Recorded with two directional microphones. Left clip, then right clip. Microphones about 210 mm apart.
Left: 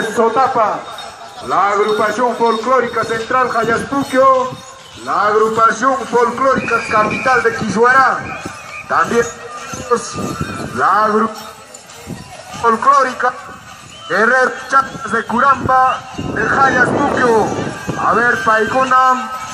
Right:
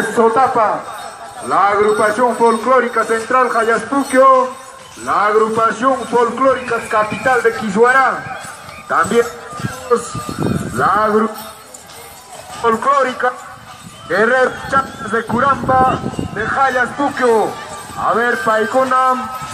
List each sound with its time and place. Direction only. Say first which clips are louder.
0.1 s a man's voice: right 1 dB; 45° right (ahead or behind)
10.8 s a man's voice: left 1 dB; 45° right (ahead or behind)
12.6 s a man's voice: left 2 dB; 45° right (ahead or behind)